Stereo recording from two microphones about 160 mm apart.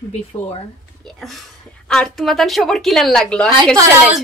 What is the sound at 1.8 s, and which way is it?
A woman's voice, 5° left (ahead or behind).